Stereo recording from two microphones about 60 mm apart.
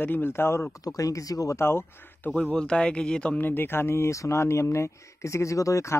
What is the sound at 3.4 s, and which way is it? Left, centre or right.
Speech, left.